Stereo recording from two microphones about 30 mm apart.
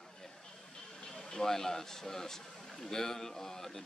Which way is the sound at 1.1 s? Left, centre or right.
Centre.